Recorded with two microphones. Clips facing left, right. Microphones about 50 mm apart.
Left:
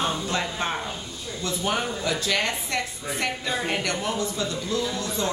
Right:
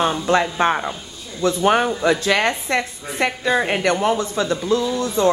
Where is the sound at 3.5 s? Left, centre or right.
Right.